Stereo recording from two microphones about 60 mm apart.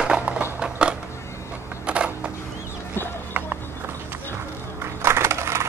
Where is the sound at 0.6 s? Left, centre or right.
Centre.